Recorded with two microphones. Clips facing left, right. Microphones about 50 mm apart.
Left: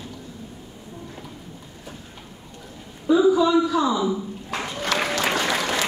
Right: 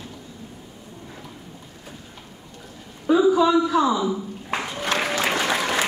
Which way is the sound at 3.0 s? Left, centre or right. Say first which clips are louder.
Even; right.